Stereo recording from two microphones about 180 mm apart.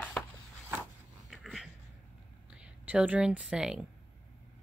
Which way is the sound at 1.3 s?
Centre (ahead or behind).